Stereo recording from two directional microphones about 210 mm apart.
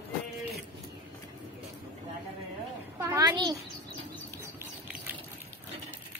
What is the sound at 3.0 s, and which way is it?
Speech, 15° right (ahead or behind).